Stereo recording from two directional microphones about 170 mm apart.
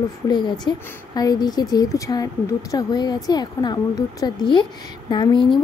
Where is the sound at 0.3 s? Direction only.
25° left (ahead or behind).